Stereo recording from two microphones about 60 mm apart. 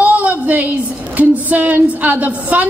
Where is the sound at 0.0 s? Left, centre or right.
Right.